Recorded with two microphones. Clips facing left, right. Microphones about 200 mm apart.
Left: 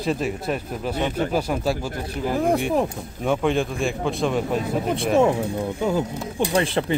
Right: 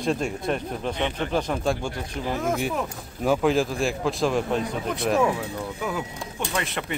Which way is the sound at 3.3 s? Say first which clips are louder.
Even; centre (ahead or behind).